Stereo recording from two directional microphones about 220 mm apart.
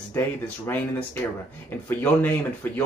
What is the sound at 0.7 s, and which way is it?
Speech, 10° left (ahead or behind).